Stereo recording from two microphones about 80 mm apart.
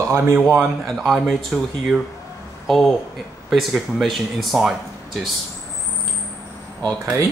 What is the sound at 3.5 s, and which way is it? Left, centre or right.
Speech, centre.